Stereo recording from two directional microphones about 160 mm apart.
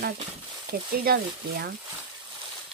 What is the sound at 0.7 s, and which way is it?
Speech, 75° right (ahead or behind).